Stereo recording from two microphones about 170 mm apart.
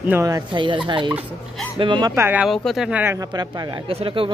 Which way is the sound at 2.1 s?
10° right (ahead or behind).